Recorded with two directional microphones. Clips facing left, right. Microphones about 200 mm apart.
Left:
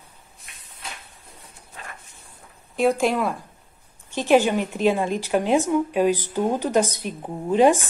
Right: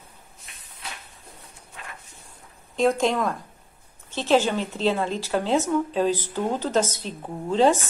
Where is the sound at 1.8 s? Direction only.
35° left (ahead or behind).